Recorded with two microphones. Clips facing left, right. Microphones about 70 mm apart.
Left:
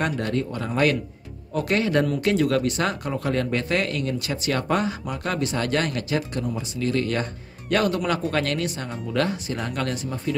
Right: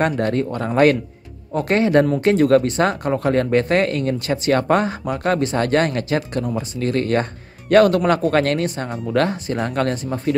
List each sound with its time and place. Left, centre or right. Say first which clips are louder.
0.0 s speech: right 6 dB; right
7.7 s speech: right 9 dB; right